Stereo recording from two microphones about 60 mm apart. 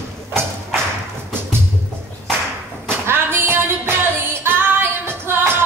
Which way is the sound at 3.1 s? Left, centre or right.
Right.